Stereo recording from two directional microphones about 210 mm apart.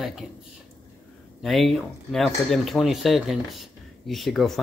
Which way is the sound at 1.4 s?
Centre (ahead or behind).